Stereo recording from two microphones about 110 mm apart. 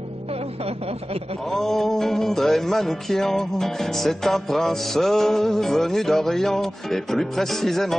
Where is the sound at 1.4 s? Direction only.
5° left (ahead or behind).